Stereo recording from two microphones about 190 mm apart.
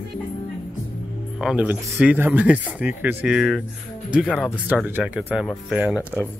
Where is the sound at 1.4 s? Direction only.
5° right (ahead or behind).